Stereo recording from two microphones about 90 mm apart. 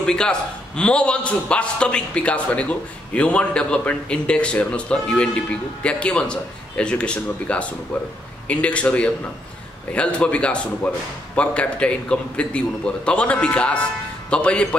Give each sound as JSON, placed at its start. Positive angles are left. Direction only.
{"t": 0.0, "sound": "a man's voice", "side_deg": 10}